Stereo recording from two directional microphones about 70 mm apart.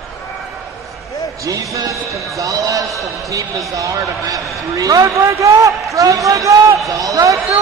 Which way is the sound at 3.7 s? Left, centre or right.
Right.